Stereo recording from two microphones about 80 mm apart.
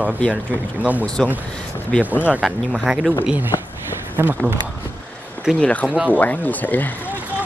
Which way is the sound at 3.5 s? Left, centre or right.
Left.